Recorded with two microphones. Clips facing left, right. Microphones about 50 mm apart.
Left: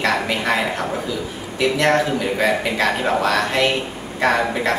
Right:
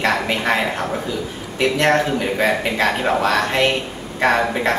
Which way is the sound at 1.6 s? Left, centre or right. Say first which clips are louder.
Right 1 dB; centre.